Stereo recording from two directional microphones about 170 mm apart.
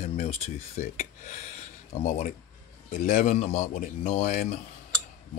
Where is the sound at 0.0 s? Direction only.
40° left (ahead or behind).